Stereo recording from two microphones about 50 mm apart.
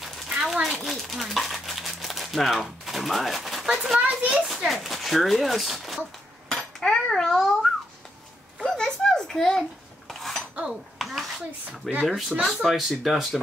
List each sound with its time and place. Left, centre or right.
0.0 s a sound: centre
4.1 s a child's voice: right
4.6 s speech: centre
6.5 s dishes: centre
10.7 s a sound: centre
12.1 s speech: centre